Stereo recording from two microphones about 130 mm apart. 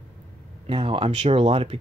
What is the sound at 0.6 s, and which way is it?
Speech, 40° right (ahead or behind).